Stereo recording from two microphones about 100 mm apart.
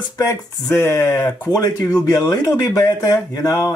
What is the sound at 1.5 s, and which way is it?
Speech, 40° left (ahead or behind).